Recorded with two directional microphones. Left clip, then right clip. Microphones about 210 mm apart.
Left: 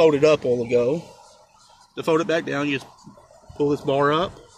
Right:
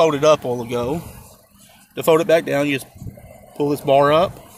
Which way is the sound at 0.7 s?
30° right (ahead or behind).